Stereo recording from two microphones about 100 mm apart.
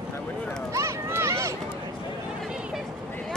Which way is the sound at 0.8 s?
25° right (ahead or behind).